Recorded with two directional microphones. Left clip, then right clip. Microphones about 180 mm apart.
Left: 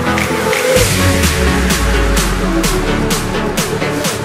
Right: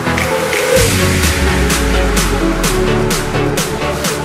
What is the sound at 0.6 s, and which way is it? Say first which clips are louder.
Music: right 1 dB; centre (ahead or behind).